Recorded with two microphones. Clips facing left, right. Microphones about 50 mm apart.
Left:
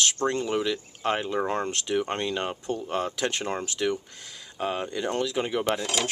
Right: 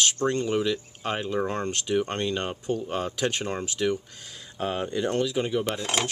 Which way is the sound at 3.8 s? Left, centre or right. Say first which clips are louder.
Right 3 dB; centre.